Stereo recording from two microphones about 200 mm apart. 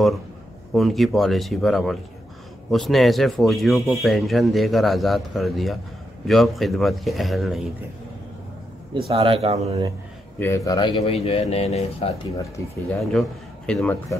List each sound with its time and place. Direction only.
0.7 s speech: centre (ahead or behind)
9.1 s speech: 30° right (ahead or behind)
10.4 s speech: 15° left (ahead or behind); by 12.2 s 30° left (ahead or behind)
13.0 s speech: 5° left (ahead or behind)